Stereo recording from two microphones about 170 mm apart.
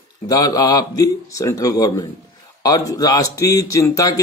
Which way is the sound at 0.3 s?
20° left (ahead or behind).